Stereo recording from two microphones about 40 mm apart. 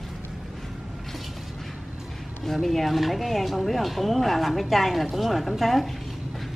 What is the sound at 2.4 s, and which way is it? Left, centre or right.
Speech, centre.